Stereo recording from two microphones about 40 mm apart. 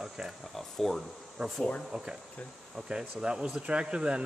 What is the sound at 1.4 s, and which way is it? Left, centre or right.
Speech, centre.